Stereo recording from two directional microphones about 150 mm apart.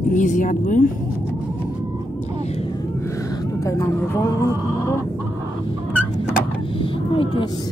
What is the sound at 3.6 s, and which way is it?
Speech, 20° left (ahead or behind).